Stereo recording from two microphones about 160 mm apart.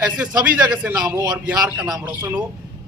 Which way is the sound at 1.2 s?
25° right (ahead or behind).